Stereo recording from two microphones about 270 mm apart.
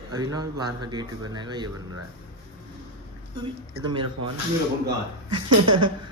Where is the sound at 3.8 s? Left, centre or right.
Centre.